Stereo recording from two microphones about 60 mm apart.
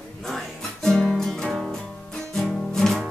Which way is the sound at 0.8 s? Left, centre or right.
Centre.